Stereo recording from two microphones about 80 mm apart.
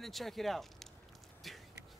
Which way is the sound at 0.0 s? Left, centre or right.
Centre.